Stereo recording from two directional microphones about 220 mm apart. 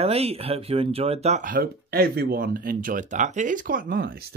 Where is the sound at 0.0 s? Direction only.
25° right (ahead or behind).